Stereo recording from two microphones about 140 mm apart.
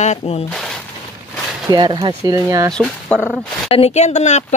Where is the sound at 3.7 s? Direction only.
50° left (ahead or behind).